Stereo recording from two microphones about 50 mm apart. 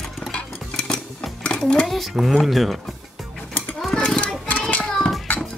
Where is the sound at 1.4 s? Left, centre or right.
Centre.